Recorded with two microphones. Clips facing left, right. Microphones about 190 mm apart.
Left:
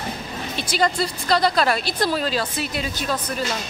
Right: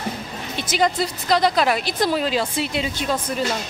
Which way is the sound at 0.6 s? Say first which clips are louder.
Right 1 dB; 20° right (ahead or behind).